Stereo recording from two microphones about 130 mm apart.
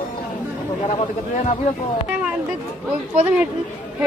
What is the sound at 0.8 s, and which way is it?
A man's voice, 60° left (ahead or behind).